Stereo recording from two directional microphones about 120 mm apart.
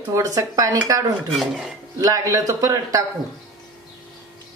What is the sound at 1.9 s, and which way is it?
Speech, 30° right (ahead or behind).